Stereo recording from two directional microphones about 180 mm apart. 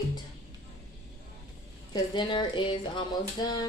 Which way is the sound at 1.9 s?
25° left (ahead or behind).